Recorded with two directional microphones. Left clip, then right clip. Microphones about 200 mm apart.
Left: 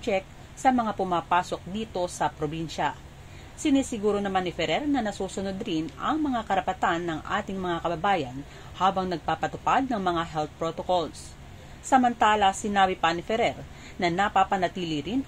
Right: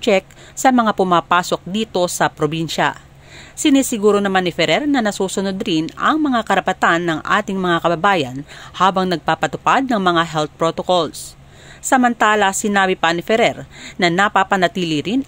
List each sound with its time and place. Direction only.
0.0 s speech: 50° right (ahead or behind)